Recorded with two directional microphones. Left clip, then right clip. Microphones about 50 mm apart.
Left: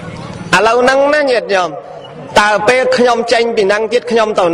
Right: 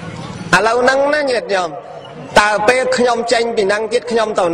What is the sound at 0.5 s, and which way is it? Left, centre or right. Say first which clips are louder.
A man's voice: left 3 dB; left.